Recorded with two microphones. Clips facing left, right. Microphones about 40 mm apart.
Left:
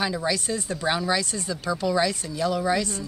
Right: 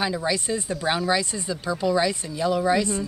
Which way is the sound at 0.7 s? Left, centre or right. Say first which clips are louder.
Right 1 dB; centre.